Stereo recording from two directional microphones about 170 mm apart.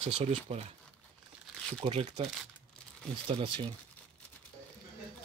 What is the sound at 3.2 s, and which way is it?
Speech, 30° right (ahead or behind).